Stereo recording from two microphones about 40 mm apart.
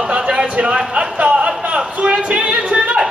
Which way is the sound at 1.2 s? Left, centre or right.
Right.